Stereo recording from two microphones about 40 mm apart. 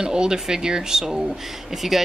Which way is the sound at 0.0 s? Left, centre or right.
Centre.